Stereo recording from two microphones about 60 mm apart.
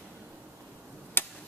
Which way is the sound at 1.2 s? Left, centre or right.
Left.